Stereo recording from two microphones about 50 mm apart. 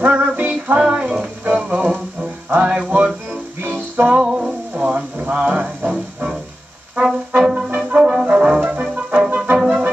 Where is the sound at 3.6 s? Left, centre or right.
Right.